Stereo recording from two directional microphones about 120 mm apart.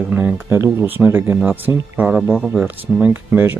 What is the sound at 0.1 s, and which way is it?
Speech, 15° right (ahead or behind).